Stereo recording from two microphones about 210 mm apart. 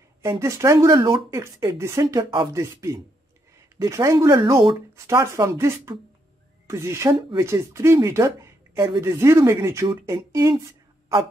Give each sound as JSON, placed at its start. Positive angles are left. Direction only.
{"t": 0.2, "sound": "speech", "side_deg": -15}
{"t": 1.3, "sound": "speech", "side_deg": -15}